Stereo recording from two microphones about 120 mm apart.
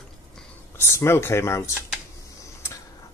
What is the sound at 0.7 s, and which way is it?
Speech, 20° left (ahead or behind).